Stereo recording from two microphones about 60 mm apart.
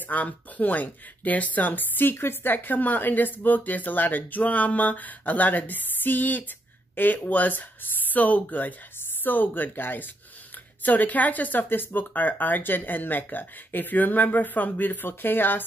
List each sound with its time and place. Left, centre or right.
0.1 s speech: left